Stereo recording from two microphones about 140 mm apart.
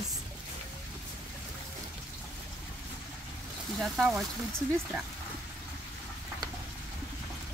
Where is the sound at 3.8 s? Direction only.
Centre (ahead or behind).